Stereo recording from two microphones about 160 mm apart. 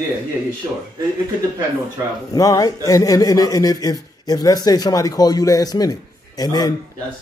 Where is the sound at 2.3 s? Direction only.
20° left (ahead or behind).